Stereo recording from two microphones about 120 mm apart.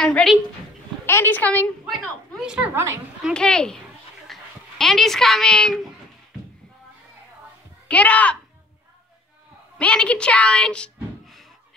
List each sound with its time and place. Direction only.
0.0 s a child's voice: 5° left (ahead or behind)
1.0 s a woman's voice: 20° left (ahead or behind)
1.9 s a woman's voice: 5° right (ahead or behind)
2.7 s a woman's voice: 25° right (ahead or behind)
3.3 s a child's voice: 5° left (ahead or behind)
7.9 s a woman's voice: 10° left (ahead or behind)
9.8 s speech: 10° left (ahead or behind)